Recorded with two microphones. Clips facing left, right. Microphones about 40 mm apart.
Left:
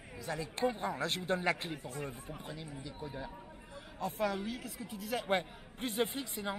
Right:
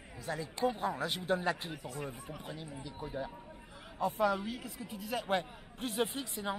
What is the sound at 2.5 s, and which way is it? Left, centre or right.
Speech, centre.